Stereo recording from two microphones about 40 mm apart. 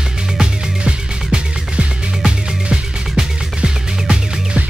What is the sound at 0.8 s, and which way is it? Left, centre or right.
Music, right.